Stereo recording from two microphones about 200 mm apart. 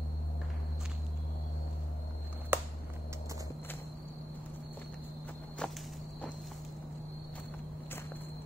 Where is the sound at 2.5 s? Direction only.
10° right (ahead or behind).